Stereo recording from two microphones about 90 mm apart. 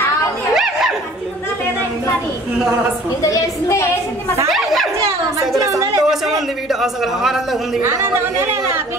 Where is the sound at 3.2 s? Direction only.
35° left (ahead or behind).